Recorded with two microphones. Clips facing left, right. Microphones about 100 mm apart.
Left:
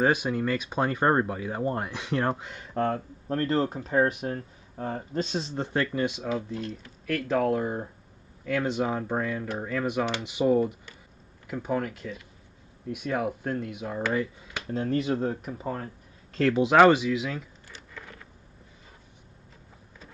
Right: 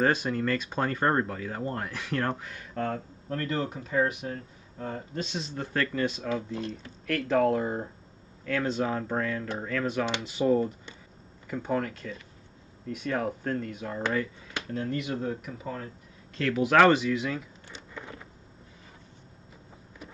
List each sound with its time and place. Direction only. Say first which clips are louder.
0.0 s speech: left 1 dB; 10° left (ahead or behind)
7.1 s speech: right 1 dB; 5° left (ahead or behind)
8.5 s speech: left 1 dB; 10° left (ahead or behind)
14.7 s speech: left 5 dB; 30° left (ahead or behind)
16.6 s speech: left 1 dB; 15° left (ahead or behind)
17.6 s a sound: right 3 dB; 20° right (ahead or behind)